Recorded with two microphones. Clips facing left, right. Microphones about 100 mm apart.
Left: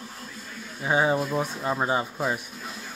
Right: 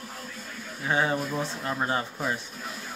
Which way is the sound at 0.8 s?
20° left (ahead or behind).